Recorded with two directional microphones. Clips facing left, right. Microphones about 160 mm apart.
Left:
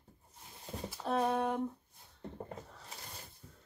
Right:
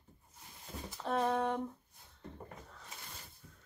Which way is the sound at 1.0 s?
5° left (ahead or behind).